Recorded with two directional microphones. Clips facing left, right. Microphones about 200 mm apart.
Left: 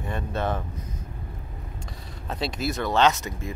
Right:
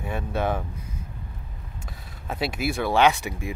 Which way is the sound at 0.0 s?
10° right (ahead or behind).